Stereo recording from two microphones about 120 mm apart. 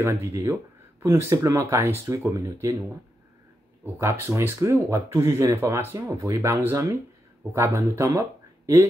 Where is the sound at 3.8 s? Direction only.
25° right (ahead or behind).